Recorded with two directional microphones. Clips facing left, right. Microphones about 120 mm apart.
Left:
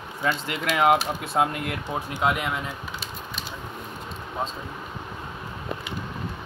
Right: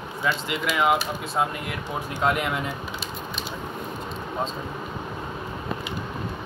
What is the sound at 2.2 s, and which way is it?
Speech, 5° left (ahead or behind).